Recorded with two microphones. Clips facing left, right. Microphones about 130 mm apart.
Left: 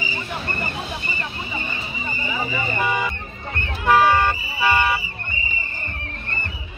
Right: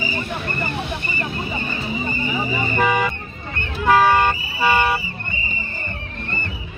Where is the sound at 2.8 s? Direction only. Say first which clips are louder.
Right 5 dB; 60° right (ahead or behind).